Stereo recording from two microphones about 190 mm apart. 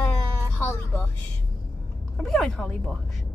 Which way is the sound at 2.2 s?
Centre (ahead or behind).